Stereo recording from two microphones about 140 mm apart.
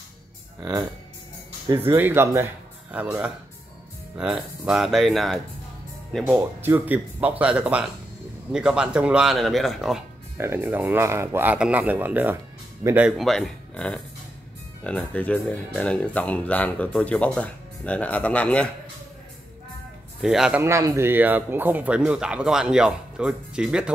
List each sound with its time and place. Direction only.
0.6 s speech: 25° right (ahead or behind); by 5.4 s centre (ahead or behind)
6.3 s speech: 15° right (ahead or behind)
10.3 s speech: 15° right (ahead or behind)
13.2 s speech: centre (ahead or behind)
20.2 s speech: 5° right (ahead or behind)
20.6 s speech: 20° right (ahead or behind)